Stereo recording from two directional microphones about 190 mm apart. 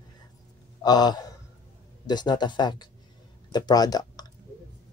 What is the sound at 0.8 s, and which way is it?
Speech, 20° left (ahead or behind).